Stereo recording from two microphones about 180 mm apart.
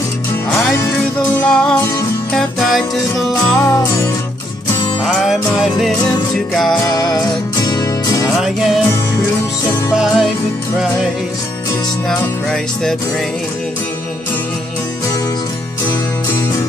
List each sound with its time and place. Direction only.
0.8 s music: 15° left (ahead or behind)
1.5 s music: 5° left (ahead or behind)
3.5 s music: 15° left (ahead or behind)
5.0 s music: centre (ahead or behind)
7.5 s music: 20° left (ahead or behind)
8.4 s music: centre (ahead or behind)
9.9 s music: centre (ahead or behind)
12.1 s music: centre (ahead or behind)